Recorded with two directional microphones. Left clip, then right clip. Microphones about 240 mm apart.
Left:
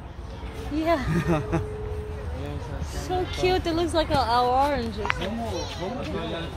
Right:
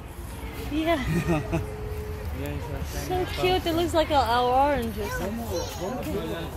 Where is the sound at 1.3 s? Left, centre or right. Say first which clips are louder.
Left 2 dB; left.